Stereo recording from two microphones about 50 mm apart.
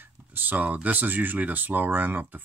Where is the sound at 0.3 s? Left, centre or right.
Right.